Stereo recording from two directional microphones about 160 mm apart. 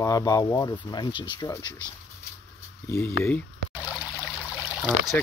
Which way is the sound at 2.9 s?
15° left (ahead or behind).